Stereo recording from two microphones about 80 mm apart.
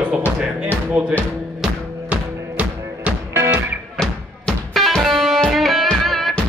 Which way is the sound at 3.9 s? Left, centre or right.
Centre.